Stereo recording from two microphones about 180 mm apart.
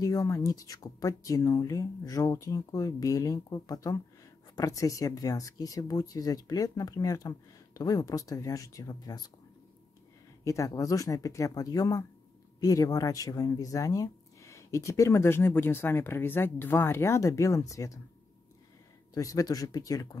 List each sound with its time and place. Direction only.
0.0 s speech: 20° left (ahead or behind)
10.4 s speech: 15° left (ahead or behind)
19.1 s speech: 20° left (ahead or behind)